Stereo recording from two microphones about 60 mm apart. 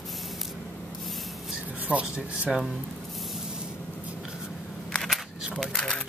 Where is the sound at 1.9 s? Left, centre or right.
Right.